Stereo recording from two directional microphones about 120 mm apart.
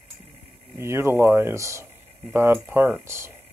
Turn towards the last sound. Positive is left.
turn(degrees=-20)  # may be behind; listen again after turning